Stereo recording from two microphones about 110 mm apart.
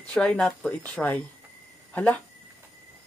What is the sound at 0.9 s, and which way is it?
Speech, 15° left (ahead or behind).